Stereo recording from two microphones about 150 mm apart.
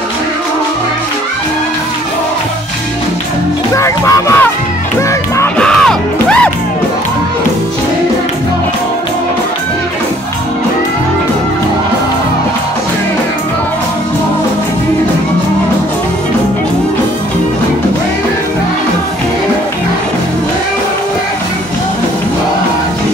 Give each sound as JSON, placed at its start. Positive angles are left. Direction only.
{"t": 3.7, "sound": "music", "side_deg": 20}
{"t": 5.6, "sound": "music", "side_deg": 5}